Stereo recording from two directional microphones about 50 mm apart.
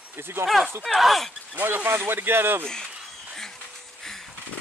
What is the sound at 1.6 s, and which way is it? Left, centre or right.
Speech, right.